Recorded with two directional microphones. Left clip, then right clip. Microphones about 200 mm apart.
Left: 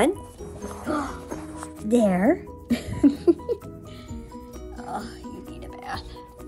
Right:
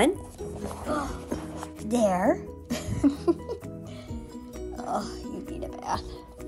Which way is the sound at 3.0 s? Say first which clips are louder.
Left 5 dB; 90° left.